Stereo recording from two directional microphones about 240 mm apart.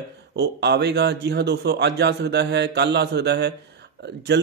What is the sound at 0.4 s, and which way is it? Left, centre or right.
Speech, right.